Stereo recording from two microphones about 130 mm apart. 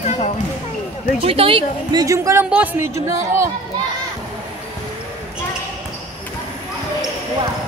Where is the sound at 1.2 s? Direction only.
45° right (ahead or behind).